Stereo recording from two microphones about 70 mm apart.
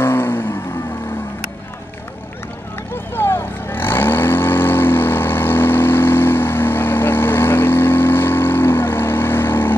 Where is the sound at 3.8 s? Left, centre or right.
Left.